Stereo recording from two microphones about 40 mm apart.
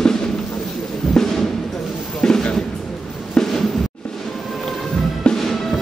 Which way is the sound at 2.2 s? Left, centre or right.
Centre.